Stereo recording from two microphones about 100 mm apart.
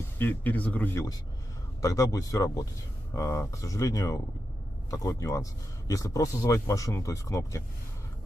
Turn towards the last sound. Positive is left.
turn(degrees=30)  # may be behind; listen again after turning